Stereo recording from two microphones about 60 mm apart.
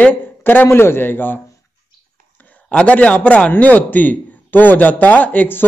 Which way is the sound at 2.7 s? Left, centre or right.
Left.